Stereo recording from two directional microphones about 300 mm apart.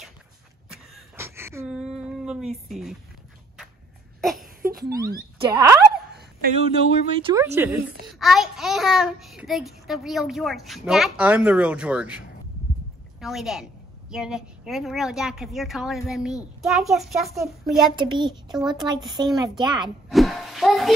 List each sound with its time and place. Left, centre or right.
0.9 s a sound: centre
4.2 s baby cry: centre
5.4 s a child's voice: centre
6.1 s speech: right
7.2 s a child's voice: centre
8.1 s child singing: centre
17.9 s a child's voice: centre
20.1 s a sound: centre